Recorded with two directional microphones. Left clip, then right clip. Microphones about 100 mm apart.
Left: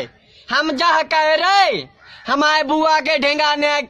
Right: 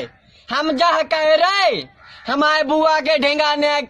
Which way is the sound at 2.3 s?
45° left (ahead or behind).